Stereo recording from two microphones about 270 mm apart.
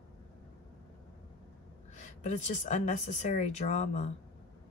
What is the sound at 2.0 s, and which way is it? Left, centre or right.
Speech, left.